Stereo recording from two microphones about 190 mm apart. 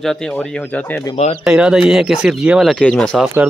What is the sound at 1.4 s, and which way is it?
Speech, 5° right (ahead or behind).